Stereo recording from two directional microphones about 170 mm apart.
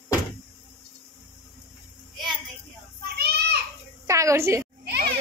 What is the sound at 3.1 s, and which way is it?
Children playing, 70° right (ahead or behind).